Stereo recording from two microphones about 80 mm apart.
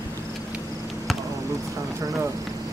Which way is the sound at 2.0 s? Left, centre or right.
Right.